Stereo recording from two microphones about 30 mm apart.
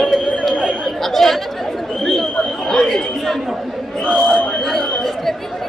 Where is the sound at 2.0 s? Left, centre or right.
Centre.